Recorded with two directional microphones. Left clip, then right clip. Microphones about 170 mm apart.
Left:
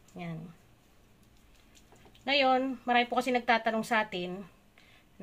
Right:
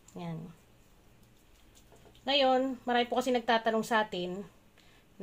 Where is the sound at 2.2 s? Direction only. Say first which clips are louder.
Even; 20° right (ahead or behind).